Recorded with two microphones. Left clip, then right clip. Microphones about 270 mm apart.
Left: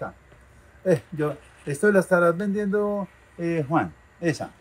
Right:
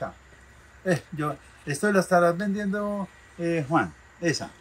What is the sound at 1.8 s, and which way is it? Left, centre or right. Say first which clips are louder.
Speech: left 2 dB; centre.